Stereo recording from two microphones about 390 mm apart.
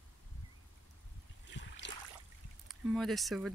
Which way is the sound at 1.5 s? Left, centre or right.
Left.